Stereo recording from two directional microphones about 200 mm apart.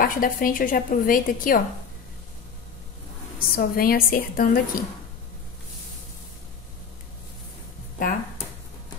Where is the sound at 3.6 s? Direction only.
50° left (ahead or behind).